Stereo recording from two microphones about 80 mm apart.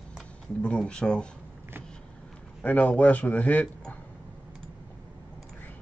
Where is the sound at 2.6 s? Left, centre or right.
Left.